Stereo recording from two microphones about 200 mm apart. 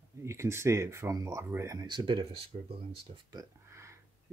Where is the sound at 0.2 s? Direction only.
15° right (ahead or behind).